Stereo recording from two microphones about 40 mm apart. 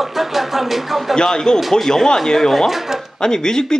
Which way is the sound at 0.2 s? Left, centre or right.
Centre.